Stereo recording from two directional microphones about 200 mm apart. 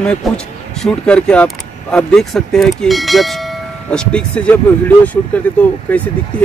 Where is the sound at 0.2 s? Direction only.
Centre (ahead or behind).